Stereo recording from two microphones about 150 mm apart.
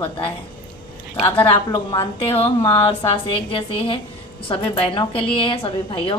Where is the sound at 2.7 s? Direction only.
40° left (ahead or behind).